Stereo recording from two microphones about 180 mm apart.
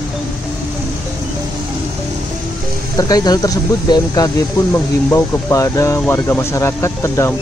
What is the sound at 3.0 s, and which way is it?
Speech, 20° left (ahead or behind).